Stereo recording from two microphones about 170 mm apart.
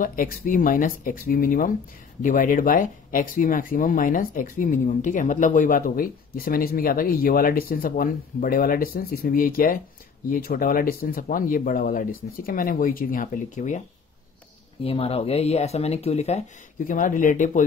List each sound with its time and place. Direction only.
0.0 s speech: 55° left (ahead or behind)
14.8 s speech: 35° left (ahead or behind); by 17.6 s 50° left (ahead or behind)